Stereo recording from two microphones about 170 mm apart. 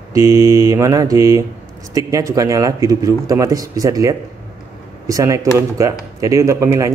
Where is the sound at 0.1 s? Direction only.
20° right (ahead or behind).